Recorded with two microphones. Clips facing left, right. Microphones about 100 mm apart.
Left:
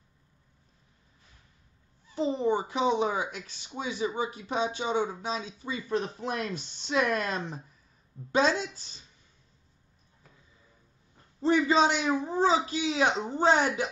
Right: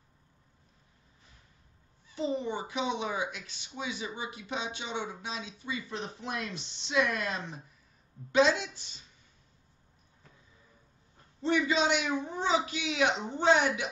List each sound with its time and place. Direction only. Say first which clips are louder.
2.1 s speech: left 5 dB; 35° left (ahead or behind)
11.4 s speech: left 4 dB; 40° left (ahead or behind)